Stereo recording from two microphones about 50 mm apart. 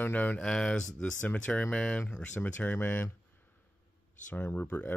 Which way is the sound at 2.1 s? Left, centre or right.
Left.